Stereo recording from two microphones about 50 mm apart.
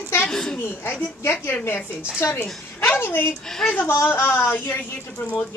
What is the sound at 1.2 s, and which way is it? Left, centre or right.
Speech, left.